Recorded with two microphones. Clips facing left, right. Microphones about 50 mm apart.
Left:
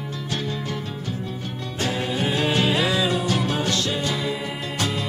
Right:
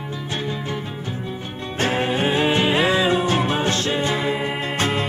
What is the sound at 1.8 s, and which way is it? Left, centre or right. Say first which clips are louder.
Music: right 5 dB; right.